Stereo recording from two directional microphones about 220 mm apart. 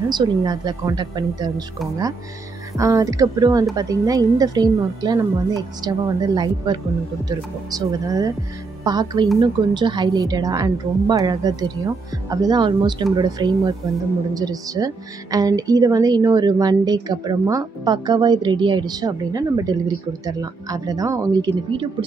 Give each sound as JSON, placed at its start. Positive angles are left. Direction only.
{"t": 0.1, "sound": "a woman's voice", "side_deg": -20}
{"t": 2.8, "sound": "a woman's voice", "side_deg": -15}